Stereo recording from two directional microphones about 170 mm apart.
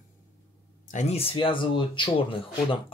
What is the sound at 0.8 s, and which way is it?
Speech, 45° left (ahead or behind).